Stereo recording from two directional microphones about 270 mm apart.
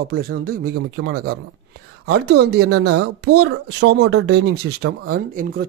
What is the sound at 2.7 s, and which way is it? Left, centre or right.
Speech, right.